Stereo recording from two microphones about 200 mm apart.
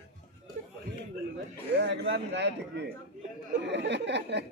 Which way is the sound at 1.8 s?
60° right (ahead or behind).